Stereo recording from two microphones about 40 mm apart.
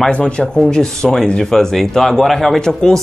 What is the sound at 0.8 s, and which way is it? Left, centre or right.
Speech, centre.